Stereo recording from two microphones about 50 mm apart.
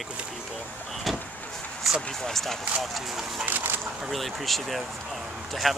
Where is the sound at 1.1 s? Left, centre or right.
Centre.